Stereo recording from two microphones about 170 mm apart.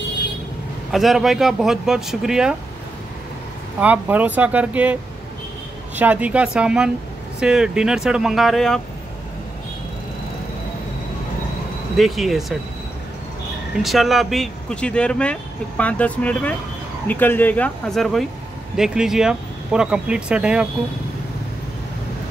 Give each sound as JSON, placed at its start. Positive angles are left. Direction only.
{"t": 0.9, "sound": "speech", "side_deg": 0}
{"t": 3.8, "sound": "speech", "side_deg": -10}
{"t": 5.9, "sound": "speech", "side_deg": -10}
{"t": 12.0, "sound": "speech", "side_deg": 0}
{"t": 13.8, "sound": "speech", "side_deg": 0}